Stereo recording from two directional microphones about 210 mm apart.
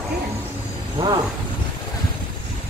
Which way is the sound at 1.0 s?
25° right (ahead or behind).